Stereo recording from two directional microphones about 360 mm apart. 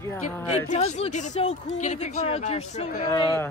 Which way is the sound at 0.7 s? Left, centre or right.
Centre.